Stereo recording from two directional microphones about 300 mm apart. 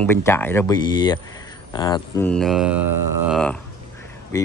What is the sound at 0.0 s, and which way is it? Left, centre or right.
Speech, centre.